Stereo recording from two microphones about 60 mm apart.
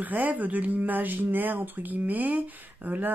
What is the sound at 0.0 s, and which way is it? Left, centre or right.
Speech, right.